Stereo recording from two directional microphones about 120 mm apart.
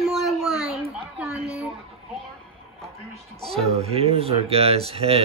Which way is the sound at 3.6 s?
55° right (ahead or behind).